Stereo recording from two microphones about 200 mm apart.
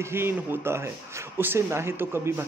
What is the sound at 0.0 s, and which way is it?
Speech, 10° right (ahead or behind).